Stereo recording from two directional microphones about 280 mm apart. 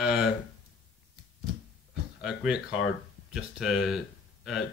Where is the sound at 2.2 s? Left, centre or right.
Centre.